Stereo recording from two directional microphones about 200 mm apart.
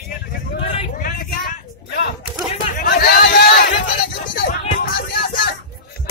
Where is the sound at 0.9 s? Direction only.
45° left (ahead or behind).